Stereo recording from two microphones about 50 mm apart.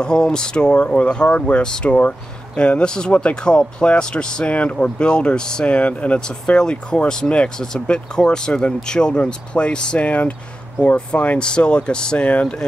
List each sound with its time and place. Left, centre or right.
0.0 s speech: centre
1.9 s speech: left